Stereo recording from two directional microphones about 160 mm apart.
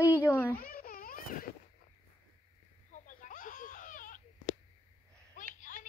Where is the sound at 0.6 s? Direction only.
65° left (ahead or behind).